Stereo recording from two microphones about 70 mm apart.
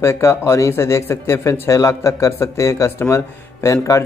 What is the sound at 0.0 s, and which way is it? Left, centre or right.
A man's voice, left.